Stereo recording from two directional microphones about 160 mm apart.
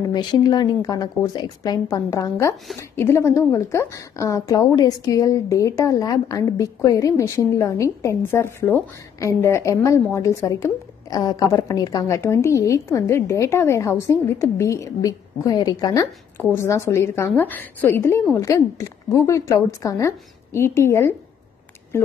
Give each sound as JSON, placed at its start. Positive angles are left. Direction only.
{"t": 0.1, "sound": "a woman's voice", "side_deg": 25}